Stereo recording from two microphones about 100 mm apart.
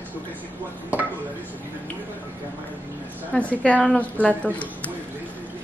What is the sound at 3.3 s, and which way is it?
Speech, 10° left (ahead or behind).